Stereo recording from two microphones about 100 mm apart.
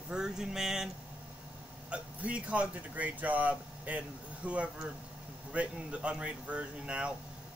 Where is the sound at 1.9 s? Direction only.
15° right (ahead or behind).